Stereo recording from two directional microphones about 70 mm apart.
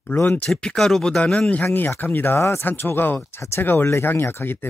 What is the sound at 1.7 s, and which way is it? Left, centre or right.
Speech, left.